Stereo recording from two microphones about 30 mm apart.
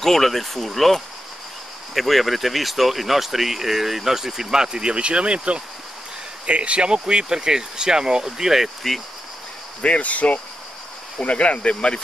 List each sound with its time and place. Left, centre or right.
0.0 s speech: centre
8.8 s speech: centre
9.8 s speech: left
11.1 s speech: left